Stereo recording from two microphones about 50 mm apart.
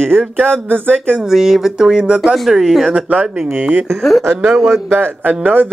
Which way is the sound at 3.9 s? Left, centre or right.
Centre.